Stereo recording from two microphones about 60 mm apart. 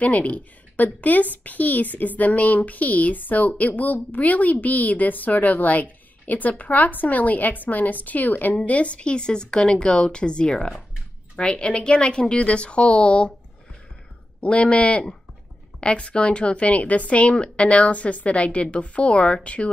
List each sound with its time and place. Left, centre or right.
0.0 s a woman's voice: left
14.4 s a woman's voice: centre